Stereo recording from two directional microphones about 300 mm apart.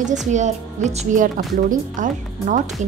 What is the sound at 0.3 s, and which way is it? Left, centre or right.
Speech, right.